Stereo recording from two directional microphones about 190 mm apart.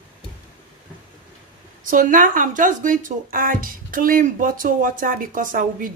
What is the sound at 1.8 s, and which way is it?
Speech, 45° right (ahead or behind).